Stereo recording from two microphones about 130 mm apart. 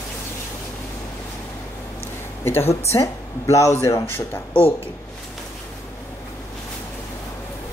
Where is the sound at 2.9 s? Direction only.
25° left (ahead or behind).